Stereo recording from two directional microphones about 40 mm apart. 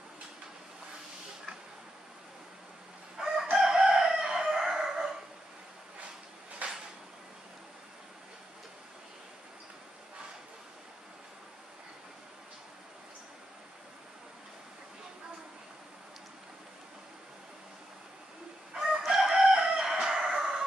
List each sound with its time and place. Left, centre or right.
3.2 s chicken: centre
6.6 s a sound: right
18.7 s crowing: centre